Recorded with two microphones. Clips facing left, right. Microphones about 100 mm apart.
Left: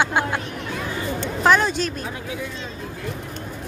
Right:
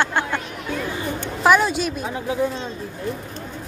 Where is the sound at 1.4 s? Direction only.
5° right (ahead or behind).